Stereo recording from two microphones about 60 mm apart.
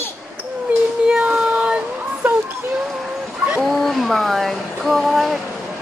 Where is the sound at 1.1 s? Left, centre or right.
Right.